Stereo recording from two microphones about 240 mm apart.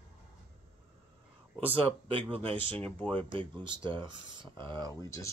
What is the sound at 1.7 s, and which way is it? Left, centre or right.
Speech, right.